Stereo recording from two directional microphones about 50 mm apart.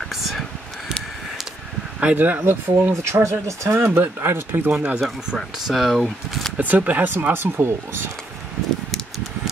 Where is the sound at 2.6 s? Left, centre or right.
Right.